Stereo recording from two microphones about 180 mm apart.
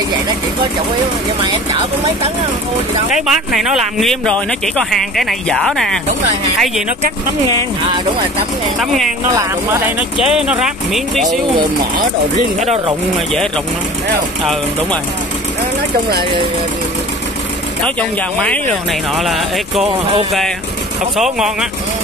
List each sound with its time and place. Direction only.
1.4 s speech: 25° right (ahead or behind)
3.1 s speech: 5° right (ahead or behind)
8.7 s speech: centre (ahead or behind)
9.3 s speech: 15° right (ahead or behind)
18.4 s speech: 5° left (ahead or behind)
21.2 s speech: 5° right (ahead or behind)